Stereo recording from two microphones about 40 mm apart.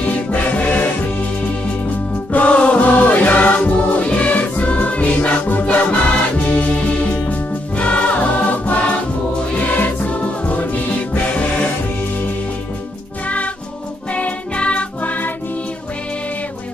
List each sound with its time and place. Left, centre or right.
0.0 s music: left
2.3 s music: left
14.1 s music: left